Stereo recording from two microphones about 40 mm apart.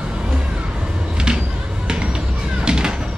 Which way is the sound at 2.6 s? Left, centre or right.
Right.